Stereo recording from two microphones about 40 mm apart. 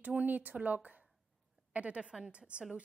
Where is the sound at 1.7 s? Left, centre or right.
Right.